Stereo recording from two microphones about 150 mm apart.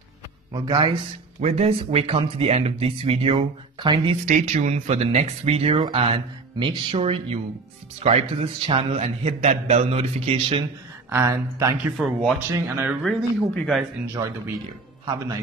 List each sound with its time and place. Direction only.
0.5 s speech: 25° right (ahead or behind)
1.4 s a man's voice: 45° right (ahead or behind)
4.3 s a man's voice: 50° right (ahead or behind)
11.1 s speech: 15° right (ahead or behind)
12.0 s speech: centre (ahead or behind)
12.6 s speech: 15° right (ahead or behind)
13.0 s speech: centre (ahead or behind)
14.2 s speech: 25° right (ahead or behind)